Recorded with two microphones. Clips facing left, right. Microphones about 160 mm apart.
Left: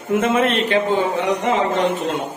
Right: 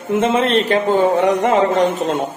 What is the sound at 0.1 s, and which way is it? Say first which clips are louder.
Speech: right 2 dB; 30° right (ahead or behind).